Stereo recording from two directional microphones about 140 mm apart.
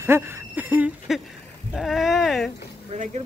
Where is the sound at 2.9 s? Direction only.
55° right (ahead or behind).